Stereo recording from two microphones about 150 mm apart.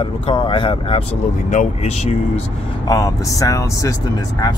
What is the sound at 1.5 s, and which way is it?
Speech, 50° left (ahead or behind).